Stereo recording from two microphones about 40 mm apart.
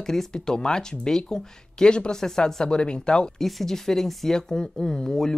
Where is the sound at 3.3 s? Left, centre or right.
Centre.